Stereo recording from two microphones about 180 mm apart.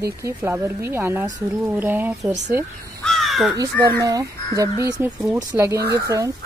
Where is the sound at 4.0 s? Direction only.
20° right (ahead or behind).